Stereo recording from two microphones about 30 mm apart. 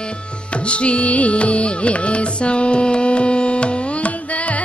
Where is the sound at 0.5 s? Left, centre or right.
Left.